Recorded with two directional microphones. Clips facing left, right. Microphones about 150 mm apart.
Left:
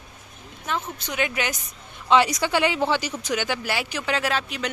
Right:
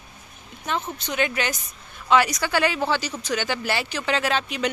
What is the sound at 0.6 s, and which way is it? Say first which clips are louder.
Speech: right 1 dB; 5° left (ahead or behind).